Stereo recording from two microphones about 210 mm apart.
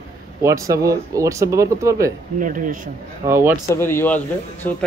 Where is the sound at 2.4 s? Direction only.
40° right (ahead or behind).